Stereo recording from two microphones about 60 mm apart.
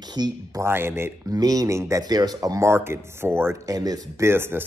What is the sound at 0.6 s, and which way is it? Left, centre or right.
Speech, right.